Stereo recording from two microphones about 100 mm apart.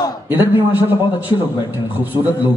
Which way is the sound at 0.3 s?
20° right (ahead or behind).